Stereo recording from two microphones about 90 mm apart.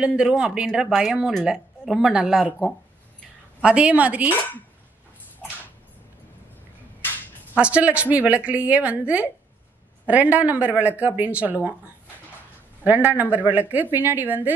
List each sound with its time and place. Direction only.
0.0 s a woman's voice: 10° right (ahead or behind)
3.6 s a woman's voice: 10° right (ahead or behind)
7.5 s a woman's voice: 15° right (ahead or behind)
12.8 s a woman's voice: 20° right (ahead or behind)